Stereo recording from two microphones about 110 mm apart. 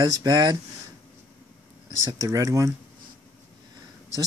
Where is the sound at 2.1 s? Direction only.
30° right (ahead or behind).